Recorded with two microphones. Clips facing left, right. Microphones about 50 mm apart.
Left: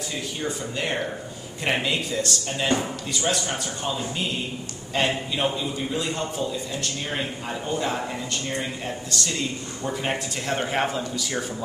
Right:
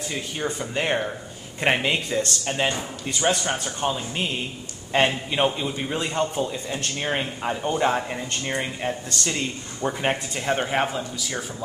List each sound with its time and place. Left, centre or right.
0.1 s a man's voice: right
4.9 s a man's voice: right; by 11.4 s centre